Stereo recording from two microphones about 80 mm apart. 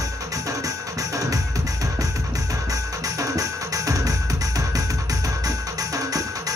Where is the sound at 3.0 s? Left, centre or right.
Right.